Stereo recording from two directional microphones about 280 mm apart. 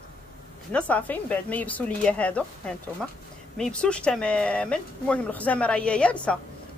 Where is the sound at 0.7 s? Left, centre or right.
Centre.